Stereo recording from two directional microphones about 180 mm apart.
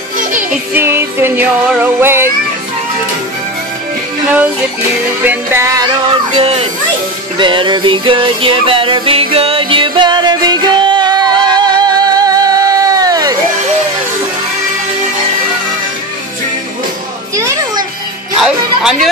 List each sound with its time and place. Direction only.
0.7 s music: 15° right (ahead or behind)
5.2 s music: 10° right (ahead or behind)
6.3 s a child's voice: 30° right (ahead or behind)
7.3 s music: 25° right (ahead or behind)
18.4 s music: centre (ahead or behind)